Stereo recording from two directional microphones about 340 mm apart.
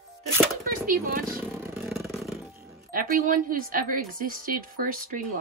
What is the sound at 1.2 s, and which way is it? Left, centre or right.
Vehicle, centre.